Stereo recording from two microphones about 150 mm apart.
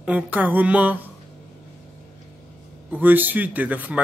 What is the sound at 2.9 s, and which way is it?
Speech, 10° right (ahead or behind).